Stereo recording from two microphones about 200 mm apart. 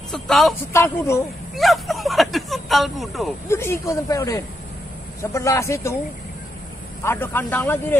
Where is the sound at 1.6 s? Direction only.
Centre (ahead or behind).